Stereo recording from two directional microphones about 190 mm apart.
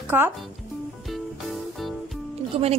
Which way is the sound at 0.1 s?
10° right (ahead or behind).